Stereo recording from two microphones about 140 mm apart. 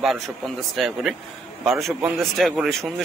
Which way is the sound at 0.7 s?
Centre (ahead or behind).